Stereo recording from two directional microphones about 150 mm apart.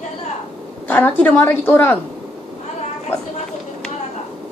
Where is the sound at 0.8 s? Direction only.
10° left (ahead or behind).